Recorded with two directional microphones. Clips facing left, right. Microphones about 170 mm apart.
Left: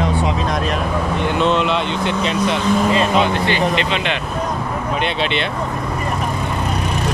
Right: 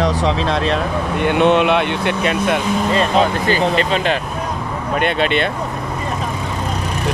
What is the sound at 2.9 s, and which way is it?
Speech, 40° right (ahead or behind).